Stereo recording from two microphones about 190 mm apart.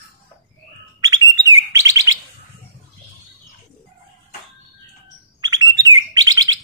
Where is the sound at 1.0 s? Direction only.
20° right (ahead or behind).